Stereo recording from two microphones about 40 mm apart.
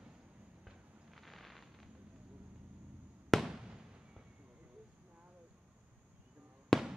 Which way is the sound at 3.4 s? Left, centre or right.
Centre.